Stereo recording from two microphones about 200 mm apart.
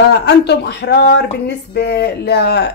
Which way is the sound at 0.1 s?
55° left (ahead or behind).